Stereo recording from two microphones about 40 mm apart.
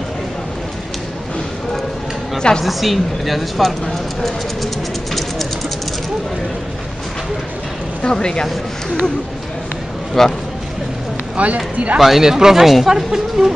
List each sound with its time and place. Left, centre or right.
2.3 s a woman's voice: centre
2.6 s speech: centre
8.0 s speech: left
10.2 s speech: centre
11.3 s speech: right
12.2 s speech: centre